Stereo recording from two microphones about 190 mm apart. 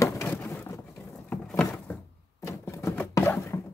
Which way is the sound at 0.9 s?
5° left (ahead or behind).